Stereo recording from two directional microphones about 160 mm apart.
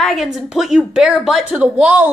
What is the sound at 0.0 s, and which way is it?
A woman's voice, centre (ahead or behind).